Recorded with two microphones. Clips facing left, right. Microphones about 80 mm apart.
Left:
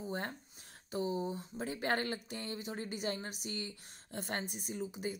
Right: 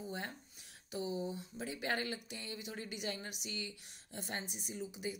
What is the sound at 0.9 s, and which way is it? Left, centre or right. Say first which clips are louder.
Speech: left 3 dB; left.